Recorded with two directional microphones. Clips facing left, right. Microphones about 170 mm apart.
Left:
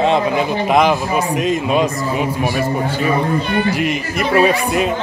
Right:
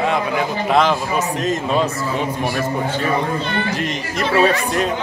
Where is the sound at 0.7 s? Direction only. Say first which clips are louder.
Left 2 dB; 15° left (ahead or behind).